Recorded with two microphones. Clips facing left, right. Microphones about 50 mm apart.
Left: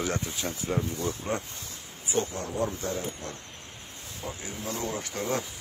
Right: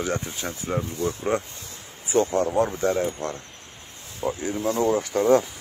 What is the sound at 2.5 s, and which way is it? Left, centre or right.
Speech, right.